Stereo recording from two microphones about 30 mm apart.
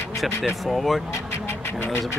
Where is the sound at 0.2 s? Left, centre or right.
Centre.